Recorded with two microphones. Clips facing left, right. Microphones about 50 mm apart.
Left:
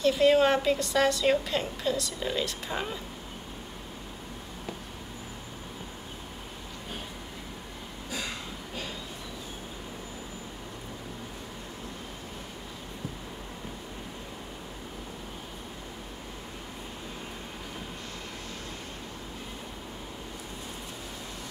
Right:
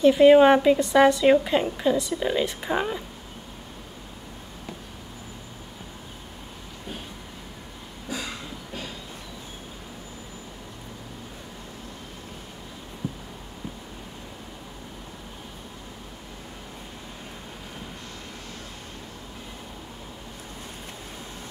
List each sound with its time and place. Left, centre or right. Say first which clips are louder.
0.0 s a woman's voice: right 8 dB; right
13.0 s heart sounds: right 7 dB; right